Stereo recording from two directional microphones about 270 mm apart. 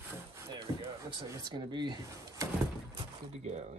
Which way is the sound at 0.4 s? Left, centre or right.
Centre.